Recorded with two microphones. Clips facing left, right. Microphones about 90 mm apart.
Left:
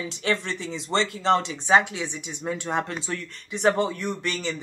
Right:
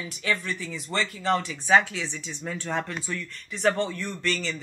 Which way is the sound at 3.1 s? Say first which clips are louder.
Left 2 dB; 40° left (ahead or behind).